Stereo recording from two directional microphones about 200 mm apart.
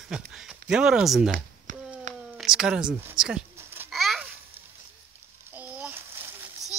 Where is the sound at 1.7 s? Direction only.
40° right (ahead or behind).